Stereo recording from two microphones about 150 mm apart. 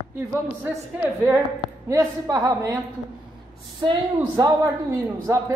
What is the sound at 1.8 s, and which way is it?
Speech, 20° right (ahead or behind).